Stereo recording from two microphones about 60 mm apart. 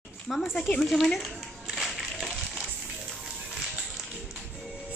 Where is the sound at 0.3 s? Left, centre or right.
Centre.